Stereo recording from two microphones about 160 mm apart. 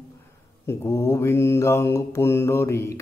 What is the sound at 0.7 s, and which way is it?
Mantra, 15° left (ahead or behind).